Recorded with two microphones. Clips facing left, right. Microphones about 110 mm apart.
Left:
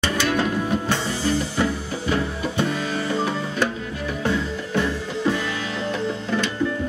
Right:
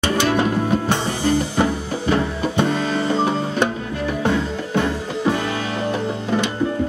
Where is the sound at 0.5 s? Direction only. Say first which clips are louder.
Right 4 dB; 35° right (ahead or behind).